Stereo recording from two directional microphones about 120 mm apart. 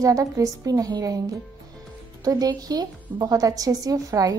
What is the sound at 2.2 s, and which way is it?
A woman's voice, 30° right (ahead or behind).